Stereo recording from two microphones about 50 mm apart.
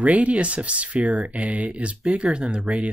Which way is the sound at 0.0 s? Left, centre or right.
Right.